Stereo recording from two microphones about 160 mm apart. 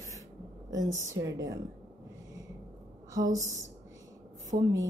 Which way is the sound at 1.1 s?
20° right (ahead or behind).